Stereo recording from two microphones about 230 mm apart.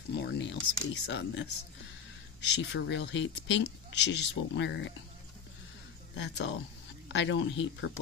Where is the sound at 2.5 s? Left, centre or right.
Left.